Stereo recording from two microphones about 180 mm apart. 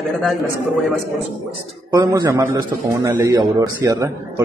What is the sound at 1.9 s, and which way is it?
A man's voice, 20° right (ahead or behind).